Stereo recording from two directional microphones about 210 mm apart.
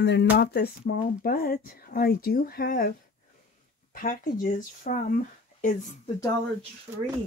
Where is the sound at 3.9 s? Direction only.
40° left (ahead or behind).